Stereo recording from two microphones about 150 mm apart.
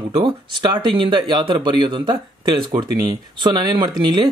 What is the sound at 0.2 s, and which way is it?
Speech, 30° right (ahead or behind).